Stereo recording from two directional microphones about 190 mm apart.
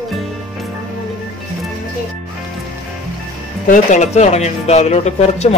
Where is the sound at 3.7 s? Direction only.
40° left (ahead or behind).